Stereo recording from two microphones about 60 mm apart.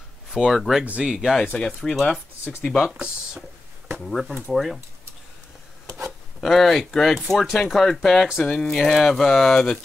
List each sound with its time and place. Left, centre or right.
0.3 s speech: centre
0.8 s speech: centre
1.1 s speech: centre
1.9 s speech: centre
2.9 s speech: centre
4.0 s speech: centre
5.9 s a sound: right
6.4 s speech: centre
8.5 s speech: centre